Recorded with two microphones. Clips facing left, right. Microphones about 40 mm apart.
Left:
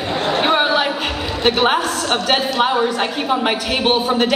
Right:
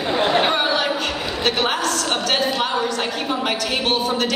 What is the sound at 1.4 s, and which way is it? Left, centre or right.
A woman's voice, centre.